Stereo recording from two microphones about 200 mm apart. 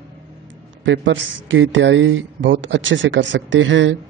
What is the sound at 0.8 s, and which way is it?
Speech, 65° right (ahead or behind).